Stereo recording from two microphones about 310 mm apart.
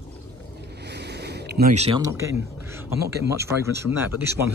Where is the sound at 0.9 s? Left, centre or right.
Right; by 2.8 s centre.